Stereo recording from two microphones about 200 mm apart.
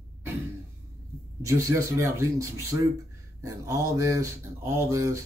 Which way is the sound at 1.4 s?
15° right (ahead or behind).